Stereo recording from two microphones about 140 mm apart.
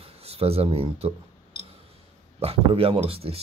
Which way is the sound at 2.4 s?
45° right (ahead or behind).